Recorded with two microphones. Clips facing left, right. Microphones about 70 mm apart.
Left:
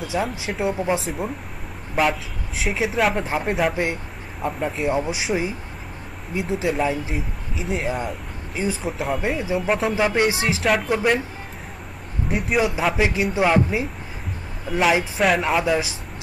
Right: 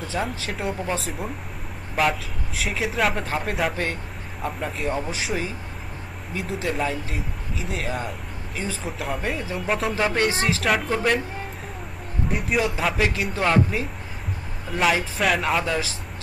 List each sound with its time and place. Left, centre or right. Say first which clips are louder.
0.1 s a man's voice: left 3 dB; centre
0.7 s a man's voice: left 5 dB; centre
1.0 s speech: left 3 dB; centre
3.7 s a man's voice: left 3 dB; centre
4.4 s speech: left 4 dB; centre
4.9 s a man's voice: left 4 dB; centre
9.9 s a man's voice: left 2 dB; centre
12.3 s a man's voice: left 3 dB; centre
15.1 s speech: left 3 dB; centre
15.6 s a man's voice: left 4 dB; centre